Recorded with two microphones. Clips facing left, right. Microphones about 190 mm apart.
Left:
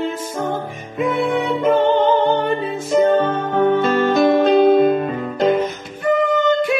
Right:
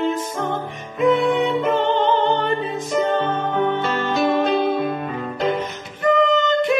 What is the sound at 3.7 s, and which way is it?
Music, 45° left (ahead or behind).